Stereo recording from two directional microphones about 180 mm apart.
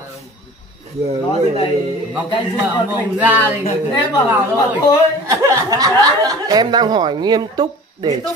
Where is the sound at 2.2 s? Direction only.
25° left (ahead or behind).